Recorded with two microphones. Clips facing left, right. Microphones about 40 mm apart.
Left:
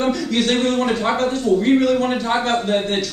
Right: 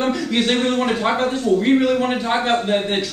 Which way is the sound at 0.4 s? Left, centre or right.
Right.